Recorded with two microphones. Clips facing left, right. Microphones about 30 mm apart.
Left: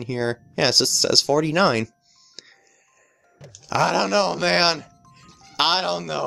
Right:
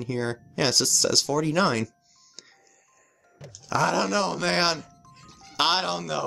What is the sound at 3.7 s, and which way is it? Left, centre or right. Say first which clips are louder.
Speech: left 3 dB; left.